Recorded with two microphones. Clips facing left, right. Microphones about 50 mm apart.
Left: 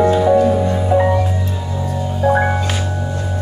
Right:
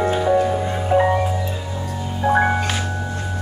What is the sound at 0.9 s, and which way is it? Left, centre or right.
Marimba, centre.